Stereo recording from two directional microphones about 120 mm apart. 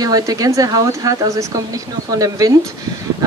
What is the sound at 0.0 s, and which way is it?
Speech, 30° right (ahead or behind).